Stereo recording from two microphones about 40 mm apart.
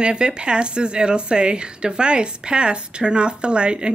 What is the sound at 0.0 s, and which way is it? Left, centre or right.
Speech, right.